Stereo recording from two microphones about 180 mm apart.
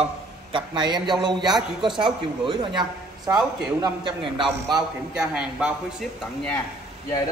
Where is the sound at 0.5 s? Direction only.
25° right (ahead or behind).